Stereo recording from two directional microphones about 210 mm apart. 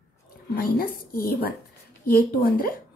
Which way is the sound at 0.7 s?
45° left (ahead or behind).